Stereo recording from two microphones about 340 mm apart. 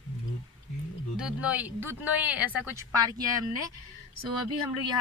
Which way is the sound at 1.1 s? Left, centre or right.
Centre.